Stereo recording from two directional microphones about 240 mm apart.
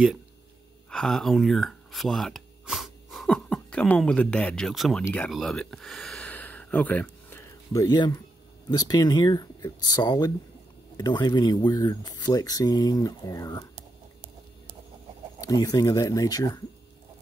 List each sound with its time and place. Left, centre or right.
0.8 s speech: centre
15.4 s speech: centre